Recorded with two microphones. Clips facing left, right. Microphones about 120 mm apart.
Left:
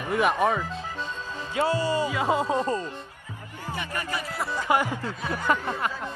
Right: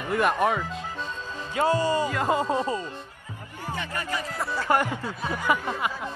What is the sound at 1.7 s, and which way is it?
Speech, 45° right (ahead or behind).